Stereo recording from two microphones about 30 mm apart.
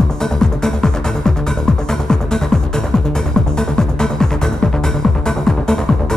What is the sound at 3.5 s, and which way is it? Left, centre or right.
Music, left.